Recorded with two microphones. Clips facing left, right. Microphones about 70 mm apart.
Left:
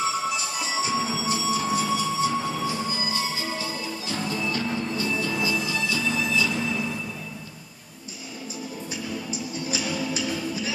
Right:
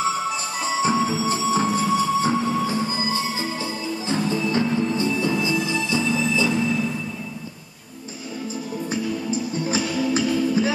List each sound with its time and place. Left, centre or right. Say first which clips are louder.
0.6 s music: right 8 dB; right
1.2 s train: right 5 dB; right
4.1 s music: right 6 dB; right
8.9 s music: right 8 dB; right